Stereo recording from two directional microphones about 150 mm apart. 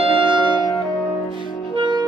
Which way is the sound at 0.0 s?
35° right (ahead or behind).